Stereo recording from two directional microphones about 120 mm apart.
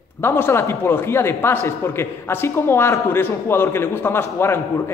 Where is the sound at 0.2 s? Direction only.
20° left (ahead or behind).